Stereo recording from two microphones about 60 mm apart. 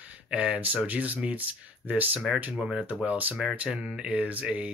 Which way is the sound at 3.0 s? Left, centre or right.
Right.